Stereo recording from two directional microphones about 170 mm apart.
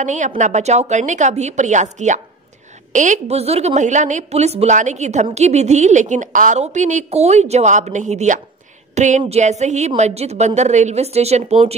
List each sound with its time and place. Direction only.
0.0 s a woman's voice: 45° right (ahead or behind)